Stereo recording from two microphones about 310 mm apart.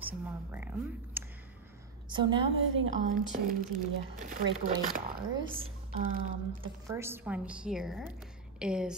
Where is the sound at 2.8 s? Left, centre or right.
Right.